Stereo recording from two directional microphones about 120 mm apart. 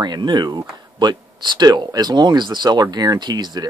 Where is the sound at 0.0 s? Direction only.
35° right (ahead or behind).